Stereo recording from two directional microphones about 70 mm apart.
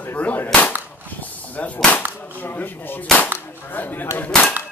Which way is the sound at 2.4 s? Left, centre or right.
Left.